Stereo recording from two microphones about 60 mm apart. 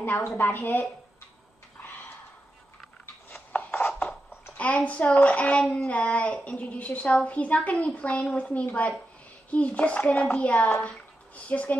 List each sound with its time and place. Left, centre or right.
0.2 s a woman's voice: left
3.3 s a sound: left
4.8 s a woman's voice: left